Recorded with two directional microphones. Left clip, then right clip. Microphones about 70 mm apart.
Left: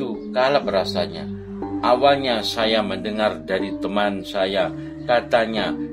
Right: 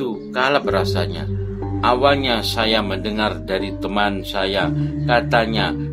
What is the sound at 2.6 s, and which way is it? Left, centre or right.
Speech, centre.